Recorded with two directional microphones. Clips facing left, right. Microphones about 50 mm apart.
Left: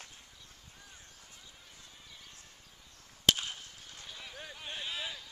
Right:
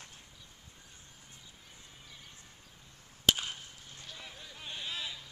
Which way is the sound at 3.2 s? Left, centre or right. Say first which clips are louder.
Even; centre.